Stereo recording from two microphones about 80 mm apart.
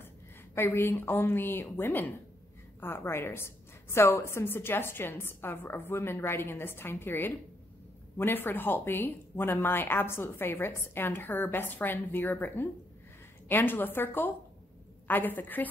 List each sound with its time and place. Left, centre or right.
0.6 s a woman's voice: left